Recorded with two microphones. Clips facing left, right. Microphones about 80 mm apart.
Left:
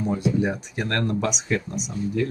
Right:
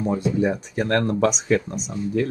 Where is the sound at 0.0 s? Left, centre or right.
Right.